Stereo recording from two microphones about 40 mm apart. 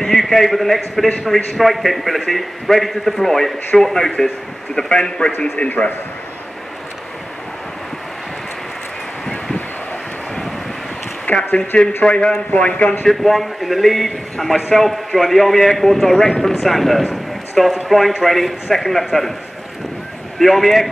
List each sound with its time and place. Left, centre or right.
0.0 s a man's voice: centre
5.6 s a man's voice: left
11.3 s speech: left
12.0 s a man's voice: left
13.0 s a man's voice: centre
16.5 s a man's voice: centre
20.3 s a man's voice: centre